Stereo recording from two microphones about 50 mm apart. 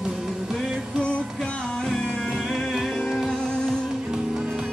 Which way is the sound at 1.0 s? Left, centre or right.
Centre.